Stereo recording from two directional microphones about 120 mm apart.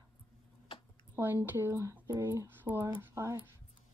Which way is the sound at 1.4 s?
20° right (ahead or behind).